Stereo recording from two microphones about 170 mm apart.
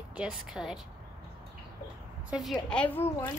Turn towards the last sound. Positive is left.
turn(degrees=10)  # may be behind; listen again after turning